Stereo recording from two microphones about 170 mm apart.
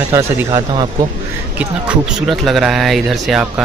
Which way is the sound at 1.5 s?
5° right (ahead or behind).